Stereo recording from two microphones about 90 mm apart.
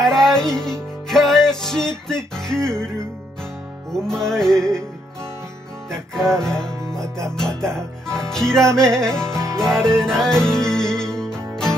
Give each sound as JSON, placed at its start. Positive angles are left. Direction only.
{"t": 0.0, "sound": "music", "side_deg": 5}
{"t": 3.9, "sound": "music", "side_deg": 5}
{"t": 5.9, "sound": "music", "side_deg": 5}
{"t": 9.3, "sound": "music", "side_deg": -35}
{"t": 9.6, "sound": "music", "side_deg": 5}